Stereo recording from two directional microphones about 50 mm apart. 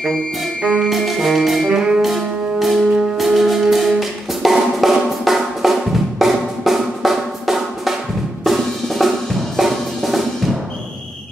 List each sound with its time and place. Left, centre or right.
0.6 s music: right
0.8 s music: centre
1.7 s music: centre
2.0 s music: centre
8.5 s drum kit: centre
9.6 s music: centre